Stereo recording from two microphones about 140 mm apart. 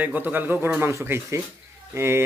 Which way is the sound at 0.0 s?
15° right (ahead or behind).